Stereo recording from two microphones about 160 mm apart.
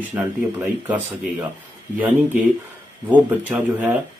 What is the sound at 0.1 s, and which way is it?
Speech, 15° right (ahead or behind).